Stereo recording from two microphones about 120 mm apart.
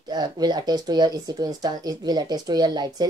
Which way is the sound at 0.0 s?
35° right (ahead or behind).